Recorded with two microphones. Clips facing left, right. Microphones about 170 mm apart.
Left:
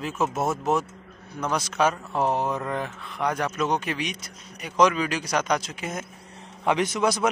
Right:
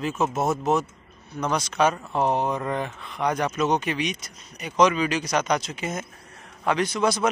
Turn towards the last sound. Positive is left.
turn(degrees=20)  # may be behind; listen again after turning